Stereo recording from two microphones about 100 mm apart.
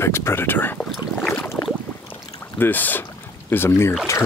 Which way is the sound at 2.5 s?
20° left (ahead or behind).